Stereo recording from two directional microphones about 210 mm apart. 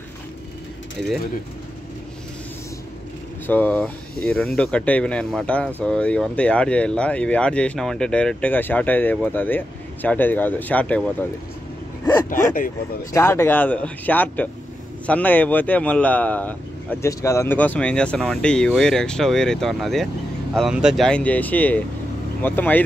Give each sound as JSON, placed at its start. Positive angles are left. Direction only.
{"t": 3.4, "sound": "speech", "side_deg": 10}
{"t": 12.3, "sound": "speech", "side_deg": 40}
{"t": 13.1, "sound": "speech", "side_deg": 10}